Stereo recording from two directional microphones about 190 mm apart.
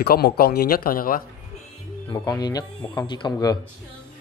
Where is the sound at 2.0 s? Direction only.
20° left (ahead or behind).